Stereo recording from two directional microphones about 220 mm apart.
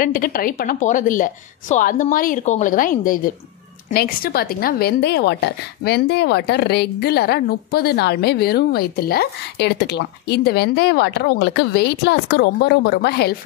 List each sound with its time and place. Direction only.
0.0 s a woman's voice: 40° left (ahead or behind)